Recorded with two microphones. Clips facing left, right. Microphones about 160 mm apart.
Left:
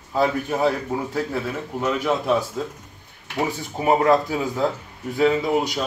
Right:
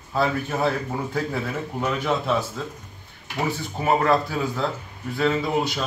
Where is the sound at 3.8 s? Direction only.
15° left (ahead or behind).